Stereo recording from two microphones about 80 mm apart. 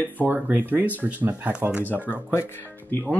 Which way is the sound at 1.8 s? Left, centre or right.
Left.